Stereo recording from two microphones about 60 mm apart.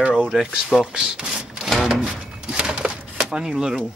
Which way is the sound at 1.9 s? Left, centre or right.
Centre.